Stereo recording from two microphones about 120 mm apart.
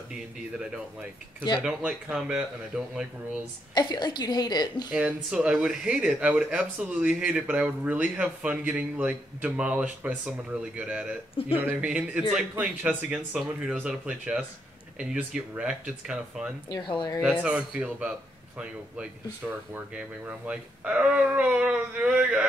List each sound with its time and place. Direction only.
1.6 s speech: 5° right (ahead or behind)
3.7 s a woman's voice: 35° left (ahead or behind)
4.9 s speech: 10° right (ahead or behind)
16.6 s a woman's voice: 40° left (ahead or behind)
17.2 s speech: 10° right (ahead or behind)
19.7 s speech: 10° right (ahead or behind)